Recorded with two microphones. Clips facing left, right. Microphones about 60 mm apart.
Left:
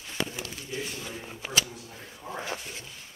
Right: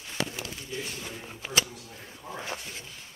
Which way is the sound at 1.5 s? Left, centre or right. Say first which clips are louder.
Right 1 dB; left.